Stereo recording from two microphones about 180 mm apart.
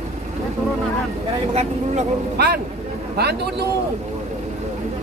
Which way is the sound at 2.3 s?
60° right (ahead or behind).